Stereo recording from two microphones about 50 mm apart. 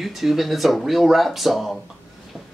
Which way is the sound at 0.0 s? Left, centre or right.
Centre.